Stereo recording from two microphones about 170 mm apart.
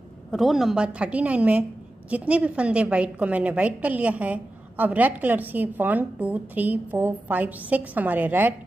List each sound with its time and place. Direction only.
0.3 s a woman's voice: centre (ahead or behind)